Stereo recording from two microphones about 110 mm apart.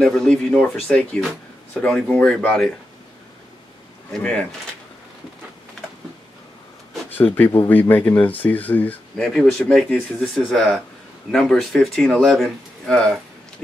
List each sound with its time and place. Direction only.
0.0 s speech: 5° left (ahead or behind)
1.7 s speech: 10° left (ahead or behind)
4.1 s speech: 5° left (ahead or behind)
7.1 s speech: 15° left (ahead or behind)